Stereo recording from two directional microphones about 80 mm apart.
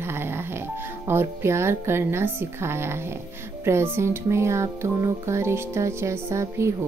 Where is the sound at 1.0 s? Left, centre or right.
Right.